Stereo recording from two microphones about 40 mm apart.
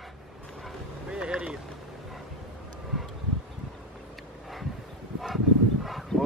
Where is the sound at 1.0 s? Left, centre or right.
Right.